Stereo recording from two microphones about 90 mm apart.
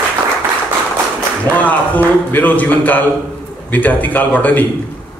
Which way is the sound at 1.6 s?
20° left (ahead or behind).